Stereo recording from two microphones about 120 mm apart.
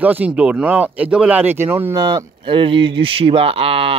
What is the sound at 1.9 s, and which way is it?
Speech, 35° right (ahead or behind).